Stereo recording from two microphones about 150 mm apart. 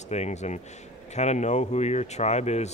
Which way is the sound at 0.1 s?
50° left (ahead or behind).